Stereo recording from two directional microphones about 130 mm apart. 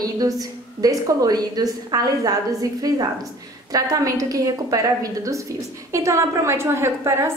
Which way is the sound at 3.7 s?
25° right (ahead or behind).